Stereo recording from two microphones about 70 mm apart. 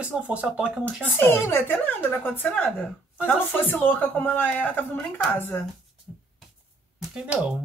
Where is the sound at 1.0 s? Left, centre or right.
Left.